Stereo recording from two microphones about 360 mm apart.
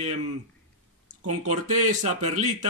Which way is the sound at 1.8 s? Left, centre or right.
Centre.